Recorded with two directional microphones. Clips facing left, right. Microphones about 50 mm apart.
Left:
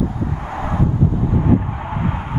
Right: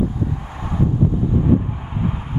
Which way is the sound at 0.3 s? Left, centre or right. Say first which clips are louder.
Left 4 dB; left.